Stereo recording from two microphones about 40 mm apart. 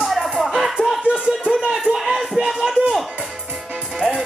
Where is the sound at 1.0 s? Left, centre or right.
Right.